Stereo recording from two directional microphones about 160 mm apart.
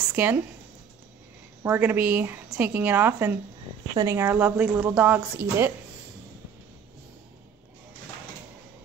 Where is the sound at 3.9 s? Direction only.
25° right (ahead or behind).